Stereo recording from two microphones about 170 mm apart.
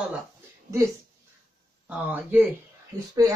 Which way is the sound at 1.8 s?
10° right (ahead or behind).